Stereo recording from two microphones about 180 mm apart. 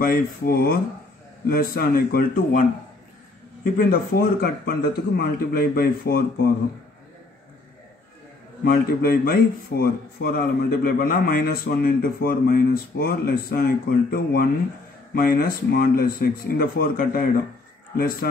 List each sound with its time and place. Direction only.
0.0 s a man's voice: 55° left (ahead or behind)
3.6 s a man's voice: 55° left (ahead or behind)
8.6 s a man's voice: 55° left (ahead or behind)